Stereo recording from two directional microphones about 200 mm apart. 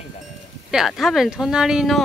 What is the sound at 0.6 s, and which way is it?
Speech, centre (ahead or behind).